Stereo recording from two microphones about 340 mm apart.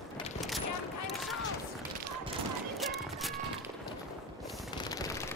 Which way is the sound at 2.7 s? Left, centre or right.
Centre.